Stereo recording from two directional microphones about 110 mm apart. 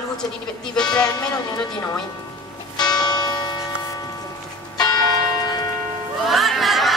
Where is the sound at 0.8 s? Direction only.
10° left (ahead or behind).